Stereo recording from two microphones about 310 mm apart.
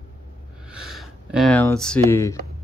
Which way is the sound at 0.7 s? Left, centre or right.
Centre.